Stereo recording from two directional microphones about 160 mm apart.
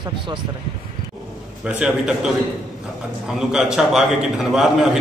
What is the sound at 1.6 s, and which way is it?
Speech, 5° right (ahead or behind).